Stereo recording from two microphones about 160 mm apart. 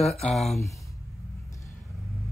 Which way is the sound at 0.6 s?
20° left (ahead or behind).